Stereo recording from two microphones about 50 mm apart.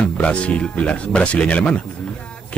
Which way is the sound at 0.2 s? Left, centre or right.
Left.